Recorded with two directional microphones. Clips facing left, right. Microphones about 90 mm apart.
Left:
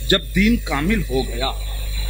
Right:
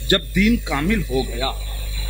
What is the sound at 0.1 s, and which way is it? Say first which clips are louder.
A man's voice: even; 15° left (ahead or behind).